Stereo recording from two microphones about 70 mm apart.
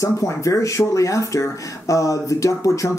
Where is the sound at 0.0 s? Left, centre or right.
Left.